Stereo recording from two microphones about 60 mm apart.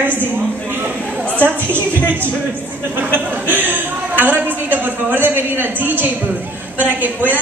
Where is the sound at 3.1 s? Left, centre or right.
Right.